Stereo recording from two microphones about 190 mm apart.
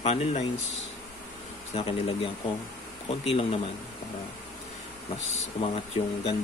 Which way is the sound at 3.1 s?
30° left (ahead or behind).